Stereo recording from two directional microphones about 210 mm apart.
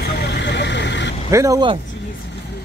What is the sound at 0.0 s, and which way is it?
Vehicle, 50° left (ahead or behind).